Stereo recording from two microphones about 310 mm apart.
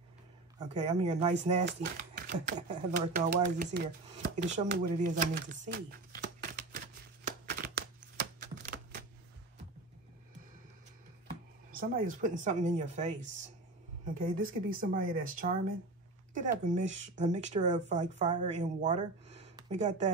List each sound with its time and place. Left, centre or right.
0.6 s speech: right
6.2 s typewriter: right
7.2 s a sound: right
8.4 s typewriter: right
11.2 s speech: right